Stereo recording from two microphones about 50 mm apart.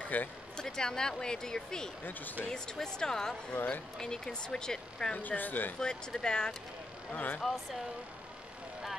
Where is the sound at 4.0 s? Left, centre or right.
Centre.